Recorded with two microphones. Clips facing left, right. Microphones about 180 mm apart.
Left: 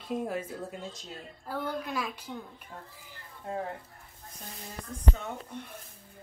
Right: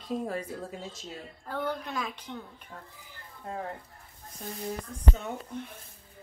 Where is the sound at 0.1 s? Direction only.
5° left (ahead or behind).